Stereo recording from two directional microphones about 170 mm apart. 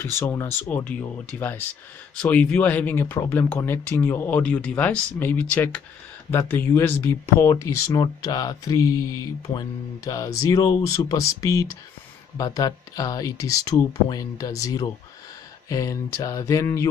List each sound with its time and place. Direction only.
0.0 s speech: 15° left (ahead or behind)